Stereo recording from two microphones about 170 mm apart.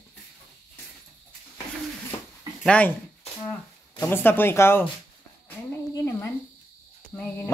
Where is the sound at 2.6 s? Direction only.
5° left (ahead or behind).